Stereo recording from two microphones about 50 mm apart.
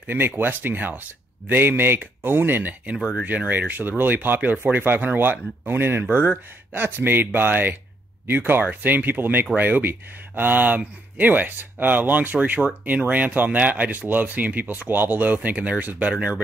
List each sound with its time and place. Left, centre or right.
0.0 s speech: right
6.0 s speech: right